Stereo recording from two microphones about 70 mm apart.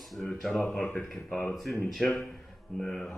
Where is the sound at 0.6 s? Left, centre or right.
Centre.